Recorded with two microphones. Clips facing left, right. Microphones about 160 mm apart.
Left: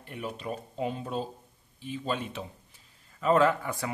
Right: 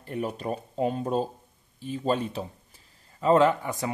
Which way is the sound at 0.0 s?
40° right (ahead or behind).